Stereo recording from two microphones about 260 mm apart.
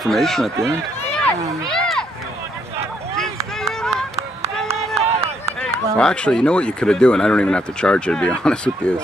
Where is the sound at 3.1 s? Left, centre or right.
Centre.